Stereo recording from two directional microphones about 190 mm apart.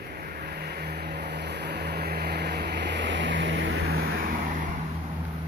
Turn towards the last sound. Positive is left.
turn(degrees=-50)  # may be behind; listen again after turning